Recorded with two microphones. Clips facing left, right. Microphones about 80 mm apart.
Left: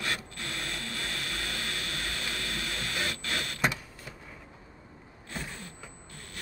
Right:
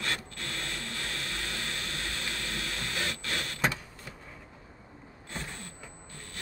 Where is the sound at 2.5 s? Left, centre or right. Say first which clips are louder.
Left 1 dB; centre.